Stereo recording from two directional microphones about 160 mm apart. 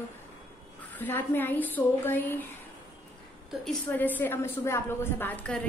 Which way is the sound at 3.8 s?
10° left (ahead or behind).